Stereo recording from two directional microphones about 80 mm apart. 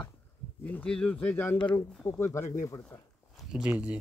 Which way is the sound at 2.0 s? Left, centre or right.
Left.